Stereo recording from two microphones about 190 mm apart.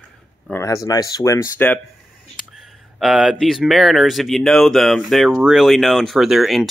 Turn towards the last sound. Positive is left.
turn(degrees=0)  # may be behind; listen again after turning